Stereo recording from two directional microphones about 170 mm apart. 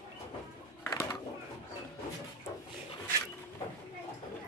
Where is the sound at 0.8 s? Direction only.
20° left (ahead or behind).